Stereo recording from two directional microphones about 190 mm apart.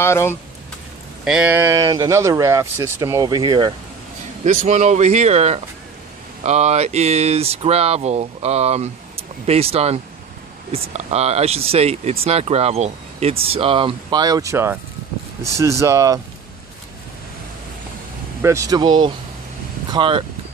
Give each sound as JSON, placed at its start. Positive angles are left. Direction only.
{"t": 0.0, "sound": "speech", "side_deg": 15}
{"t": 1.2, "sound": "speech", "side_deg": -5}
{"t": 4.5, "sound": "speech", "side_deg": -40}
{"t": 18.4, "sound": "speech", "side_deg": -15}